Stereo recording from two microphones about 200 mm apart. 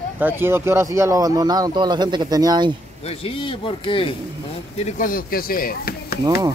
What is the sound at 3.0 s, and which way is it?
Speech, 30° left (ahead or behind).